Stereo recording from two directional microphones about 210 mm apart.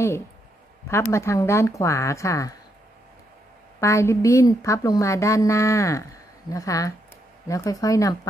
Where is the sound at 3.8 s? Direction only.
15° left (ahead or behind).